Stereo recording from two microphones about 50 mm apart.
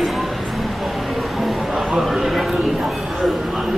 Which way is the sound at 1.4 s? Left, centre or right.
Centre.